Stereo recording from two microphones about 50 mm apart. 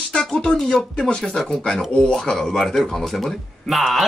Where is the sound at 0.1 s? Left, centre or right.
Centre.